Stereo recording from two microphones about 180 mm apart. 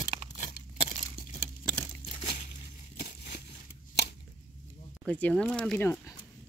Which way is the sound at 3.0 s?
60° left (ahead or behind).